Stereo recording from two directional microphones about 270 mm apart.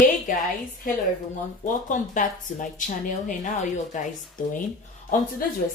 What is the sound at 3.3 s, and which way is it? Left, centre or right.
Speech, left.